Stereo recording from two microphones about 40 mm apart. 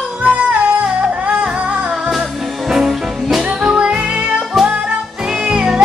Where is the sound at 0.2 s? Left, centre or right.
Right.